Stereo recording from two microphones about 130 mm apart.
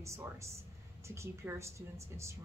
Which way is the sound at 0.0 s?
20° right (ahead or behind).